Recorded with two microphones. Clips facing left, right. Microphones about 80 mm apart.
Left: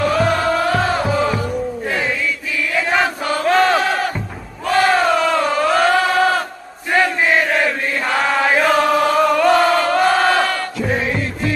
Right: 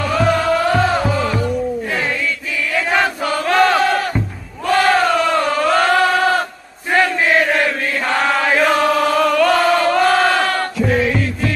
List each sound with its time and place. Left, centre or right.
0.0 s music: centre
2.9 s battle cry: centre
4.7 s chant: centre
9.2 s chant: centre
10.9 s music: centre